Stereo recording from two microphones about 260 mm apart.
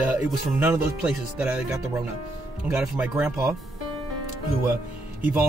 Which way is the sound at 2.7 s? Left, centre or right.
Centre.